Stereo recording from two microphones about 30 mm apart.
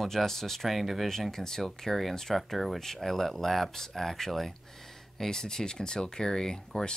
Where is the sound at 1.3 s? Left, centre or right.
Centre.